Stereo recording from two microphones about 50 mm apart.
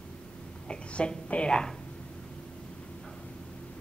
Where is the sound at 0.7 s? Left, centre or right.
Left.